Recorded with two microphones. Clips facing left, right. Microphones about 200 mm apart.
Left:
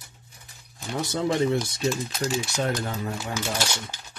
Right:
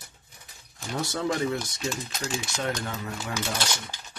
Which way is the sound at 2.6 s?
35° left (ahead or behind).